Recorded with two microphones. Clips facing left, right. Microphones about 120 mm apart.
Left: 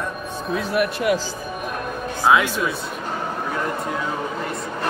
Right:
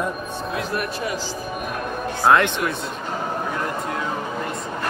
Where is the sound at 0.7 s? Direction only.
75° left (ahead or behind).